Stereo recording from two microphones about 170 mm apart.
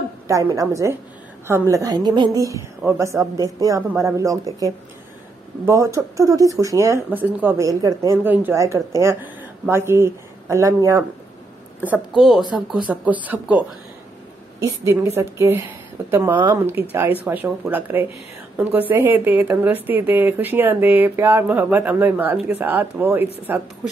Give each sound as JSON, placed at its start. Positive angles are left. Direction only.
{"t": 0.3, "sound": "a woman's voice", "side_deg": -20}
{"t": 12.2, "sound": "speech", "side_deg": 0}
{"t": 14.6, "sound": "speech", "side_deg": -15}